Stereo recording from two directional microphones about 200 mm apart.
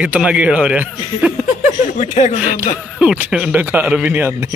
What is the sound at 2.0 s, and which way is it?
Speech, 35° left (ahead or behind).